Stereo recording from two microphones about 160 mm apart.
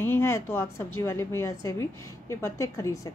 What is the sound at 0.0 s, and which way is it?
A woman's voice, 15° left (ahead or behind).